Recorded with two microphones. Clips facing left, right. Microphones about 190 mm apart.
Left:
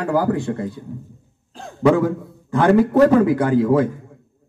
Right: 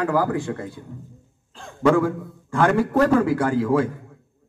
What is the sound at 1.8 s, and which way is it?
Speech, 20° left (ahead or behind).